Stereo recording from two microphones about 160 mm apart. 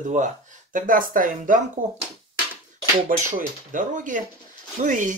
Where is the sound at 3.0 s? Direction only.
55° right (ahead or behind).